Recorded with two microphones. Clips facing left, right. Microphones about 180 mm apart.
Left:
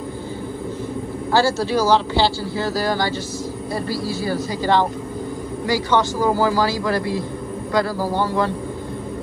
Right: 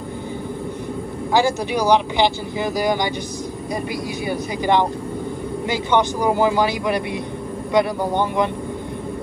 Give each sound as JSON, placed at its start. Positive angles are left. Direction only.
{"t": 1.3, "sound": "speech", "side_deg": -15}